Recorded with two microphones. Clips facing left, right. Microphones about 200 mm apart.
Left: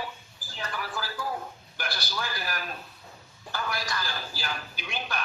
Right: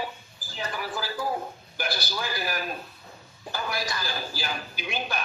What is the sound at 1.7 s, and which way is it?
A man's voice, 10° right (ahead or behind).